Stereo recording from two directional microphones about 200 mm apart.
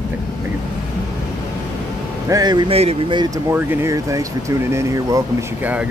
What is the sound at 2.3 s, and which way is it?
Speech, 20° right (ahead or behind).